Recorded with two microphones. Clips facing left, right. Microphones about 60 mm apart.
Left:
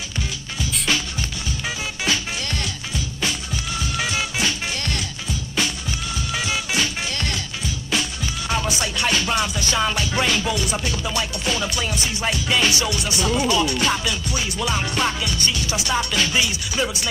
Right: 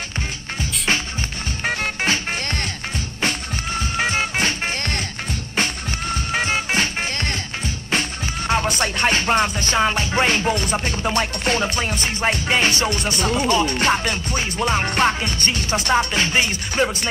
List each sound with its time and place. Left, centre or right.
0.6 s music: right
1.6 s music: right
6.1 s music: right